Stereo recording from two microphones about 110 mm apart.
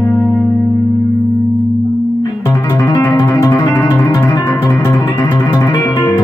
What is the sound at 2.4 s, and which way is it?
Music, 20° left (ahead or behind).